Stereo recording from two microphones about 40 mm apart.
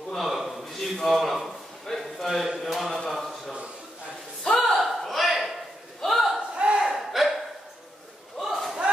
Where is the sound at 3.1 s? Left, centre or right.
Centre.